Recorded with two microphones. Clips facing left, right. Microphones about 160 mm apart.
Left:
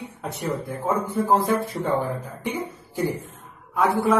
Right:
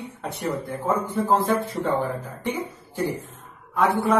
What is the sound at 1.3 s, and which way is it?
Speech, 10° left (ahead or behind).